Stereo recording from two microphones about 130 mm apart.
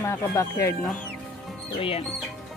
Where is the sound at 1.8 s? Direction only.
45° left (ahead or behind).